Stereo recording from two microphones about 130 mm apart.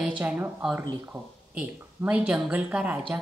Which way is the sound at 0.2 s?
10° right (ahead or behind).